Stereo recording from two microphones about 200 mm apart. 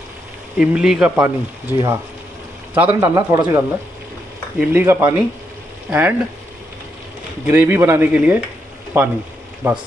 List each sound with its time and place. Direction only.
0.6 s speech: 5° right (ahead or behind)
3.2 s speech: 20° right (ahead or behind)
4.6 s speech: 10° right (ahead or behind)
7.4 s speech: 10° right (ahead or behind)